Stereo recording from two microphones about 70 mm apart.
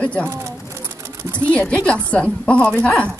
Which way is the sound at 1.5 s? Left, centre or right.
Centre.